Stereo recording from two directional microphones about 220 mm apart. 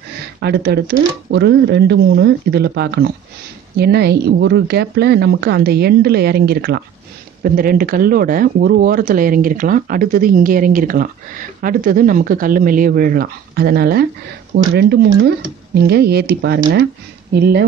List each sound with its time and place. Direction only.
0.4 s speech: 50° right (ahead or behind)